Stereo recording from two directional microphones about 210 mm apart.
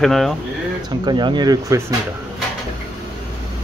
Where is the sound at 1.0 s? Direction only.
20° right (ahead or behind).